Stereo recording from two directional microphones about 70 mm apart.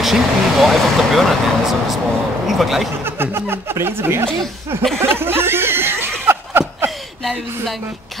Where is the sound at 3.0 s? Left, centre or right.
Right.